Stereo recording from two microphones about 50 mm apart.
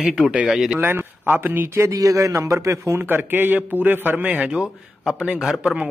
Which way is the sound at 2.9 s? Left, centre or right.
Right.